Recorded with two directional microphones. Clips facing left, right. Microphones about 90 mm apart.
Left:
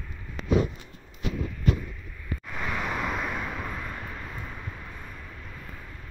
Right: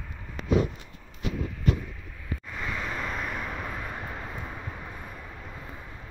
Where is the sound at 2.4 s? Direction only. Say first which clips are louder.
Left 3 dB; 10° left (ahead or behind).